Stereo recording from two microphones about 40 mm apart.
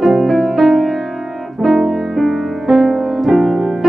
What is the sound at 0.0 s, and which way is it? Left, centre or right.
Music, centre.